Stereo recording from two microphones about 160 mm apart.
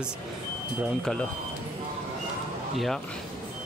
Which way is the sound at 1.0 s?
5° left (ahead or behind).